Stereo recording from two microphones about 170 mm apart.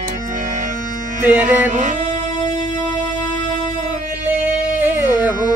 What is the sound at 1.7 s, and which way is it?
Music, 45° right (ahead or behind).